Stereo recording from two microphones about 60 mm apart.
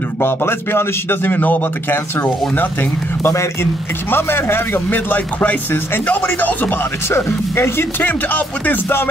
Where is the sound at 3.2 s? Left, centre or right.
Left.